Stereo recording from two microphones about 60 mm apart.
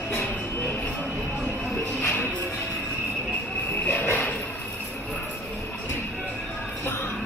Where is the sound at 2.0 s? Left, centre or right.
Left.